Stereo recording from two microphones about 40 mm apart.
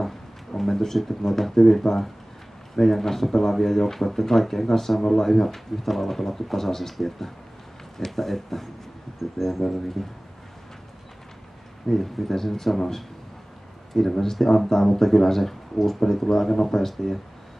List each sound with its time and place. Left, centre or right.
0.6 s speech: centre
11.9 s speech: centre